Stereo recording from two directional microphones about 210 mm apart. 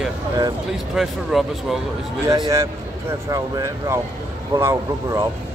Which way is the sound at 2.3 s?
15° right (ahead or behind).